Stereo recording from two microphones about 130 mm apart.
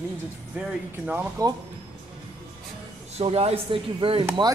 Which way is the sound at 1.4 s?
25° right (ahead or behind).